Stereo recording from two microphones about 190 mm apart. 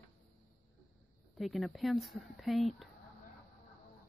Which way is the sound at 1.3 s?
Centre (ahead or behind).